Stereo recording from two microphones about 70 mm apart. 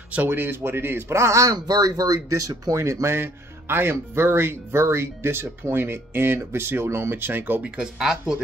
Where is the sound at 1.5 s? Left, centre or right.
Right.